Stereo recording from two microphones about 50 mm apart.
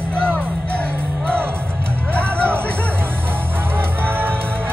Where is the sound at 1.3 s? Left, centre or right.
Right.